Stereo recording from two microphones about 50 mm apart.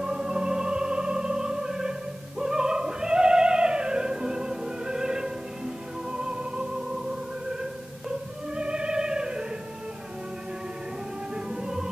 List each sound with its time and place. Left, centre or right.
0.0 s music: centre
8.5 s music: centre
11.3 s music: centre